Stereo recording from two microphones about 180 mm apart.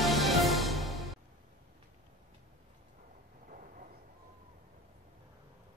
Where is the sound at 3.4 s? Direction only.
50° right (ahead or behind).